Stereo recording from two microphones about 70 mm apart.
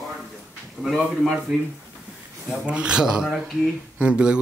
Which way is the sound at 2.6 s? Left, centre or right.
Centre.